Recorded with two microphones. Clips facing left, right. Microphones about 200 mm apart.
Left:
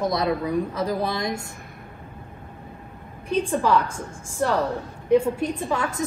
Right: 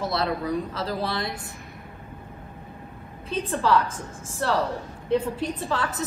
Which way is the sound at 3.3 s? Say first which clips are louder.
Left 2 dB; 15° left (ahead or behind).